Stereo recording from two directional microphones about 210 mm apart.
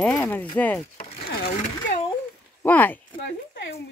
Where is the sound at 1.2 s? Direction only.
45° left (ahead or behind).